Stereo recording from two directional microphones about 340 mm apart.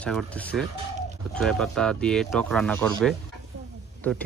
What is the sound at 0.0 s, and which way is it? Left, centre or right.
Speech, centre.